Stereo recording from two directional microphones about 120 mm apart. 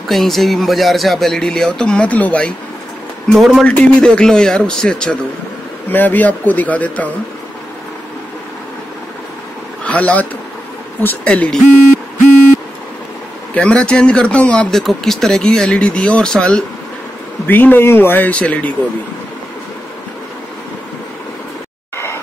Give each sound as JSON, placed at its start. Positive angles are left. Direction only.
{"t": 0.1, "sound": "speech", "side_deg": 0}
{"t": 3.3, "sound": "speech", "side_deg": 0}
{"t": 9.8, "sound": "speech", "side_deg": 10}
{"t": 13.6, "sound": "speech", "side_deg": 10}
{"t": 21.9, "sound": "a sound", "side_deg": 20}